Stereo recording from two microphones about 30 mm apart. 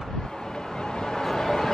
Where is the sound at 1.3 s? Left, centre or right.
Centre.